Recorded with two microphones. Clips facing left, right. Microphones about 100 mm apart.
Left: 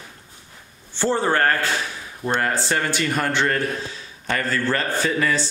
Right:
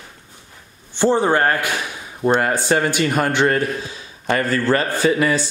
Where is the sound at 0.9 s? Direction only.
15° right (ahead or behind).